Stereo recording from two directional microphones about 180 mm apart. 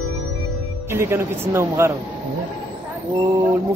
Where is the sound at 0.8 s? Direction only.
15° right (ahead or behind).